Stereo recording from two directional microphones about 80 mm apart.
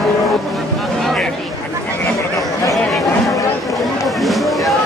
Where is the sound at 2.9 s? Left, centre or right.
Centre.